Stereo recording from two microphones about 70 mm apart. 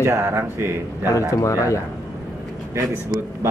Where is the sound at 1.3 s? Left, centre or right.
Left.